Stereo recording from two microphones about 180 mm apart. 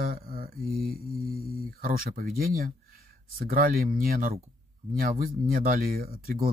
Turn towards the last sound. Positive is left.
turn(degrees=-55)  # may be behind; listen again after turning